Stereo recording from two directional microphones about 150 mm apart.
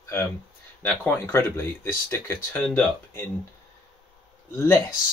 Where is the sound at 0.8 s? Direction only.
15° left (ahead or behind).